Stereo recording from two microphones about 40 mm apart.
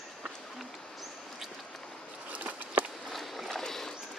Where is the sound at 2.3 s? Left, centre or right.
Right.